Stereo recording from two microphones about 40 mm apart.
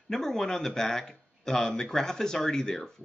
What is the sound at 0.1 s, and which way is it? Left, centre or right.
Speech, centre.